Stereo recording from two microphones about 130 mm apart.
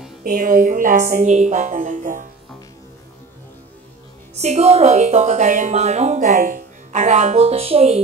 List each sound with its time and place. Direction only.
0.2 s a woman's voice: 90° right
4.4 s a woman's voice: 55° right (ahead or behind)